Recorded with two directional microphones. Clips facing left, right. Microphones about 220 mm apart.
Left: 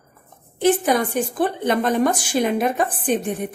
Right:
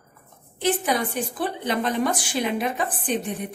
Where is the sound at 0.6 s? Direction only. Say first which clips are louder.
Left 6 dB; 45° left (ahead or behind).